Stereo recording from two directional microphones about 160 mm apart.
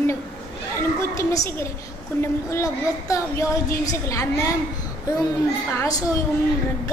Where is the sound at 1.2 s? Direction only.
20° left (ahead or behind).